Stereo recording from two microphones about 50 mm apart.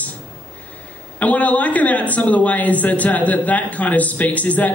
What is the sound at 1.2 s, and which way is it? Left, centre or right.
A woman's voice, left.